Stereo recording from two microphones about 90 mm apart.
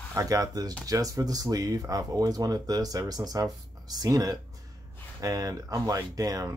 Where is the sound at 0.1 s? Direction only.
40° right (ahead or behind).